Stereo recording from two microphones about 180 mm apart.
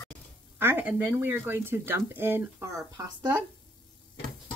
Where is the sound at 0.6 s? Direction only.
10° right (ahead or behind).